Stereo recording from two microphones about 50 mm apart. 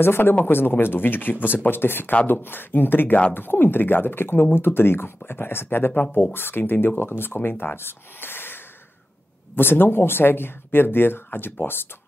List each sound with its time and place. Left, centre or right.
0.0 s speech: left
9.6 s speech: left